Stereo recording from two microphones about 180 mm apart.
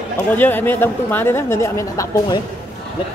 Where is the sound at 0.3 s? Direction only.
10° left (ahead or behind).